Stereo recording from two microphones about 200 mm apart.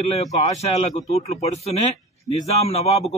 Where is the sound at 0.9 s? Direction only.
30° left (ahead or behind).